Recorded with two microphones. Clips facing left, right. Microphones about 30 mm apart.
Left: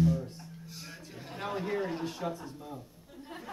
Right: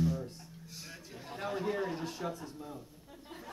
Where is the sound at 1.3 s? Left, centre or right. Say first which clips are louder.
Left 1 dB; centre.